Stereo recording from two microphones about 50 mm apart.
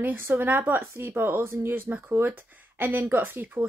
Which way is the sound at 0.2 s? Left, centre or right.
Right.